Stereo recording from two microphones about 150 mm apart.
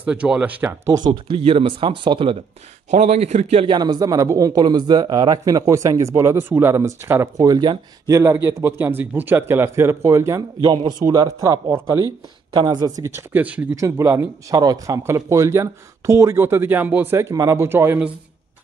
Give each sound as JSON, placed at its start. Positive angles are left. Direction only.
{"t": 0.0, "sound": "speech", "side_deg": -5}
{"t": 0.9, "sound": "speech", "side_deg": -30}
{"t": 2.9, "sound": "speech", "side_deg": -50}
{"t": 3.7, "sound": "speech", "side_deg": -25}
{"t": 8.1, "sound": "speech", "side_deg": -15}
{"t": 12.5, "sound": "speech", "side_deg": -30}